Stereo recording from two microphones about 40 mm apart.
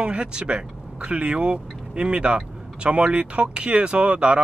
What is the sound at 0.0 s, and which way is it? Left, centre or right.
Speech, right.